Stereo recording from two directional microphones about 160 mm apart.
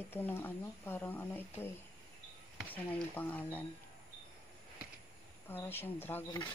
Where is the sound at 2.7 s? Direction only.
10° left (ahead or behind).